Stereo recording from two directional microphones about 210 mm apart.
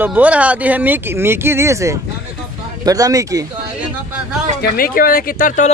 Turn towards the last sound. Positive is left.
turn(degrees=40)  # may be behind; listen again after turning